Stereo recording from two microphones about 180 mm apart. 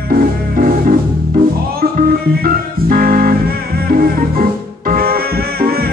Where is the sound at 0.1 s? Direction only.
50° right (ahead or behind).